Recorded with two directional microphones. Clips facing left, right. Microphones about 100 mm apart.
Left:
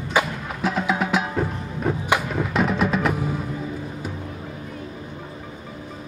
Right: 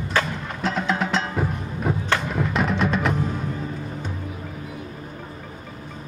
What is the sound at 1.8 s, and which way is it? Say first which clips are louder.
Music: left 2 dB; 5° right (ahead or behind).